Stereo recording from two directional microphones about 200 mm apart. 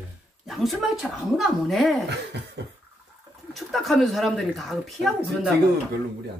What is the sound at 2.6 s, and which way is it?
Bathtub, 60° right (ahead or behind).